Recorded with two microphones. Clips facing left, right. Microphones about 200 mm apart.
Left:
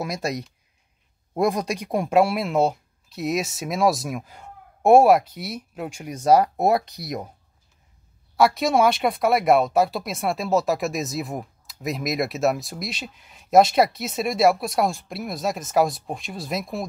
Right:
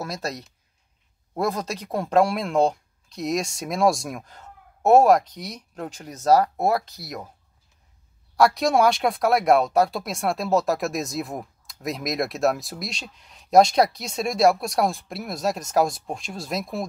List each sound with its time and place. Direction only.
0.0 s speech: 10° left (ahead or behind)
8.4 s speech: centre (ahead or behind)